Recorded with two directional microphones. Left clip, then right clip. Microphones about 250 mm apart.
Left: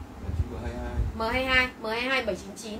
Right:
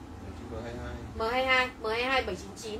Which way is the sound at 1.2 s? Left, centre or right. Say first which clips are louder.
Left 2 dB; centre.